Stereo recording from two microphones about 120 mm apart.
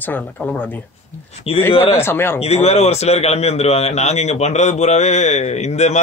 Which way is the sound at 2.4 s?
60° left (ahead or behind).